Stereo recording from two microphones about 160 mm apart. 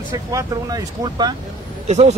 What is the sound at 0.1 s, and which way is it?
Speech, 20° right (ahead or behind).